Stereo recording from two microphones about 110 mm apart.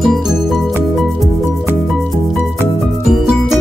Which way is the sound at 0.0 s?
Centre (ahead or behind).